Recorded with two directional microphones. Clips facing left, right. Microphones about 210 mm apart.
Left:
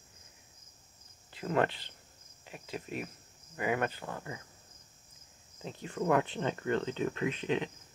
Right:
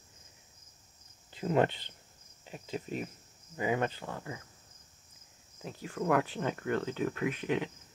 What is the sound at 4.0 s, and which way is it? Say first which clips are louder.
Speech: even; centre (ahead or behind).